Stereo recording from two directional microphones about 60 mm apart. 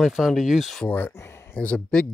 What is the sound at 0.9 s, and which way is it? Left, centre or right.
Speech, left.